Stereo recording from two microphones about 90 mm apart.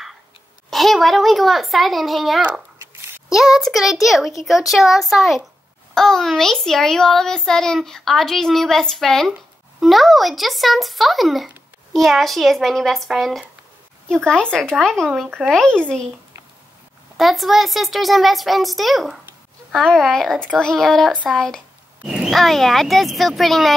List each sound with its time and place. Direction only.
0.7 s a child's voice: centre (ahead or behind)
2.8 s a sound: 35° right (ahead or behind)
3.3 s a child's voice: 5° right (ahead or behind)
15.2 s speech: 15° right (ahead or behind)
15.5 s speech: 10° left (ahead or behind)
17.2 s a child's voice: centre (ahead or behind)
22.0 s a child's voice: 5° right (ahead or behind)